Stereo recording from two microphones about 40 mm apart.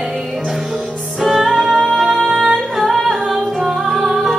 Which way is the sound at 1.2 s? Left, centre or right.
Centre.